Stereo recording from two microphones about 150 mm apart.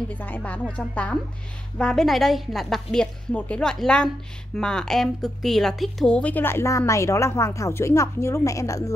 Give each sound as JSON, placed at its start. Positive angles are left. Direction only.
{"t": 0.1, "sound": "a woman's voice", "side_deg": 10}